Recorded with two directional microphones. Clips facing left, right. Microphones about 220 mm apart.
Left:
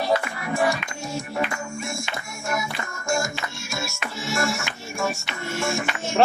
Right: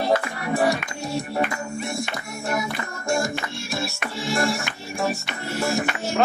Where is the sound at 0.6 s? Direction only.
35° right (ahead or behind).